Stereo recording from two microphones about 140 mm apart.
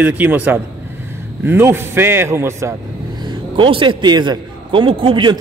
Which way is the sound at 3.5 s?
35° right (ahead or behind).